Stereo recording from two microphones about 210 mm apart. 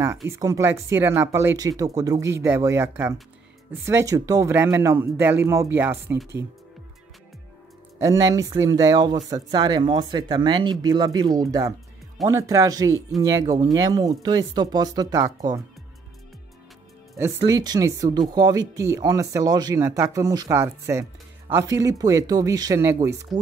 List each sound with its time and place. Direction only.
0.3 s speech: 15° right (ahead or behind)
8.0 s speech: 15° right (ahead or behind)
17.4 s speech: 20° right (ahead or behind)